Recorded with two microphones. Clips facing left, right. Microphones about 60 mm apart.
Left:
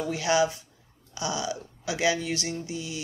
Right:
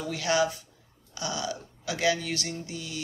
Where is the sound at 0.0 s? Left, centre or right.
Left.